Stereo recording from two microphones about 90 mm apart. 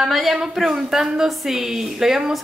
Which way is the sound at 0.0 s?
5° right (ahead or behind).